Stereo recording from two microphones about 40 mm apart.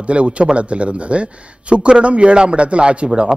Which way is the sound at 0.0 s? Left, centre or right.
Right.